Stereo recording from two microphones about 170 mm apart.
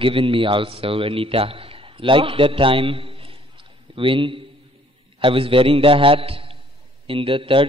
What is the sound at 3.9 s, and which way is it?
A man's voice, 30° right (ahead or behind).